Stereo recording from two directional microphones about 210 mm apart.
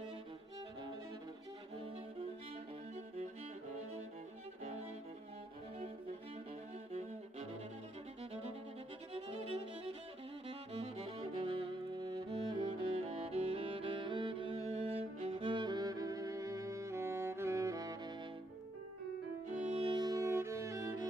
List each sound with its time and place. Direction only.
9.1 s violin: 30° right (ahead or behind)
10.7 s music: 25° right (ahead or behind)
19.7 s music: 25° right (ahead or behind)